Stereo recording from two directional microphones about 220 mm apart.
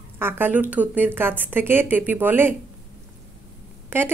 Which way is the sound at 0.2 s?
10° right (ahead or behind).